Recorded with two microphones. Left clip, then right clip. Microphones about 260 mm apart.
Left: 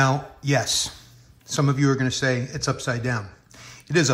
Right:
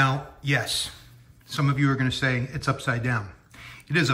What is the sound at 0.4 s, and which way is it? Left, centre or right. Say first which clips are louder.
Speech: left 1 dB; centre.